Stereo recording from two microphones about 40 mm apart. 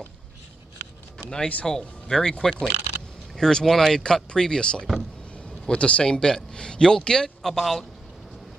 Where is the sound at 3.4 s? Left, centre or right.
Centre.